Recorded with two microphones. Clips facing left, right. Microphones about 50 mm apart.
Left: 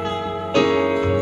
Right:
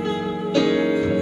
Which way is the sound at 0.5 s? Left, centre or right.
Left.